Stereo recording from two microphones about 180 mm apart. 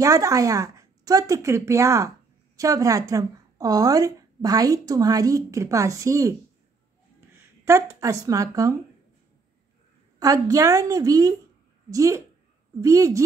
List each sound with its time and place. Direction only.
0.0 s a woman's voice: 20° right (ahead or behind)
7.6 s speech: 15° right (ahead or behind)
10.1 s a woman's voice: 20° right (ahead or behind)